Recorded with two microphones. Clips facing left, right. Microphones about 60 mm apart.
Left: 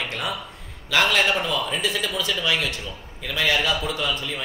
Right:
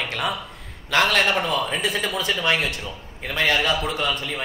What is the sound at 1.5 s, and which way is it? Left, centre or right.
A man's voice, right.